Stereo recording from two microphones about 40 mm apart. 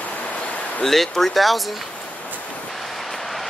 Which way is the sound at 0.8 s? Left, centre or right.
Centre.